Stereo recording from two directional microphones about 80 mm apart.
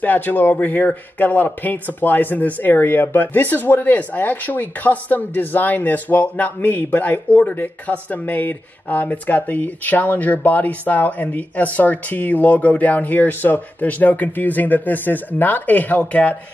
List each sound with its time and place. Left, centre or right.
0.0 s speech: left